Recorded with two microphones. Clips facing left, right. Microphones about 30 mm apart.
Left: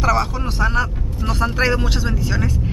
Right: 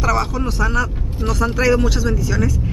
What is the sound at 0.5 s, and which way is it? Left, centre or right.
Speech, left.